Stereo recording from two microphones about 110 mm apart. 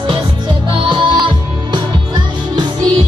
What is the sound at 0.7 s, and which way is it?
Music, 45° right (ahead or behind).